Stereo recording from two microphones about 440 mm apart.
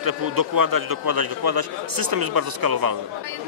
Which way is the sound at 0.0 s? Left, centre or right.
Right.